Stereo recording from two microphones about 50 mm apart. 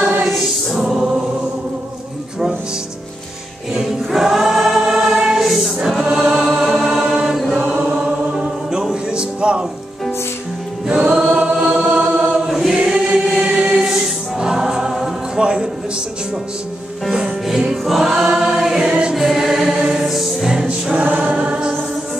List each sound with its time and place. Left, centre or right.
0.0 s choir: centre
3.7 s choir: centre
7.8 s chant: centre
8.6 s music: centre
11.3 s chant: centre
12.4 s choir: centre
17.1 s music: centre
18.1 s choir: centre
18.9 s music: centre
19.1 s choir: centre
20.9 s choir: right